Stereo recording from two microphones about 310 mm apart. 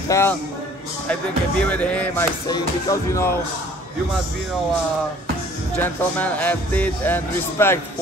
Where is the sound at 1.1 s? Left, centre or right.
Centre.